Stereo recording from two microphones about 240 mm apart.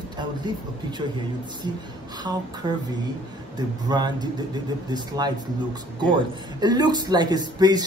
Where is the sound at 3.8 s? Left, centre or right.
Centre.